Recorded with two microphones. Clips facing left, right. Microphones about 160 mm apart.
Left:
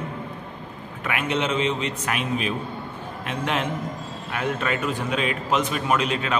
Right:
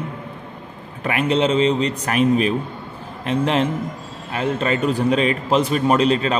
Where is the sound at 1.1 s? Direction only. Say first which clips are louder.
Right 7 dB; 35° right (ahead or behind).